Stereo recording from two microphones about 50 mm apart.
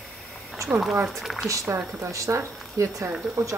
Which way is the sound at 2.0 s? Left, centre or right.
Right.